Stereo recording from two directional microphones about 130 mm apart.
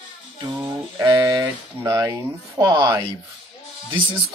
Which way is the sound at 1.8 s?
25° right (ahead or behind).